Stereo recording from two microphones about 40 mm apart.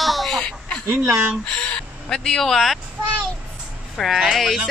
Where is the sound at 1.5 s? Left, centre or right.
Left.